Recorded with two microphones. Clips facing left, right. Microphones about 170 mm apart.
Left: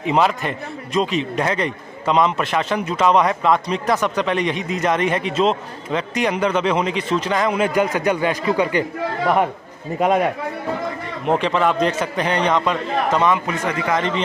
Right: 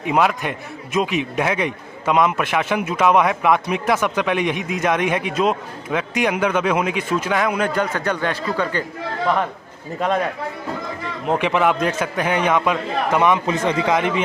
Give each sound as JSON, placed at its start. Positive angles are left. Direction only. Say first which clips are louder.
{"t": 0.0, "sound": "a man's voice", "louder": "left 1 dB", "side_deg": -5}
{"t": 7.7, "sound": "a man's voice", "louder": "left 3 dB", "side_deg": 10}
{"t": 9.9, "sound": "a man's voice", "louder": "left 3 dB", "side_deg": 10}
{"t": 11.3, "sound": "a man's voice", "louder": "even", "side_deg": -10}
{"t": 13.5, "sound": "speech", "louder": "right 3 dB", "side_deg": -25}
{"t": 13.9, "sound": "a man's voice", "louder": "right 1 dB", "side_deg": -10}